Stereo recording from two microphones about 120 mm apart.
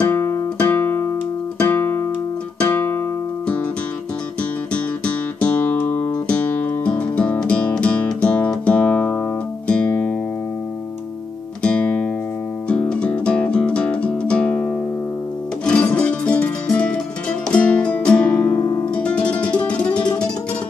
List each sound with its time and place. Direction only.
0.0 s guitar: 15° left (ahead or behind)
1.6 s music: 15° left (ahead or behind)
4.4 s music: 10° left (ahead or behind)
11.6 s music: 10° left (ahead or behind)
18.6 s music: 30° left (ahead or behind)
18.9 s music: 10° left (ahead or behind)